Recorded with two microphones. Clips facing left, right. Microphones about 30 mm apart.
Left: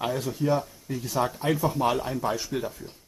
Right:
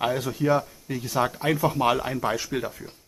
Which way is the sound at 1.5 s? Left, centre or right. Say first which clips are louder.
Right 2 dB; right.